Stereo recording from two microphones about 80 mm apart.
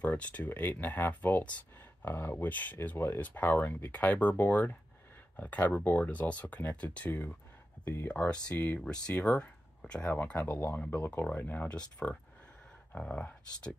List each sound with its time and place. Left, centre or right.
0.0 s speech: centre
7.8 s speech: left
8.1 s speech: centre
10.2 s speech: left
12.0 s speech: centre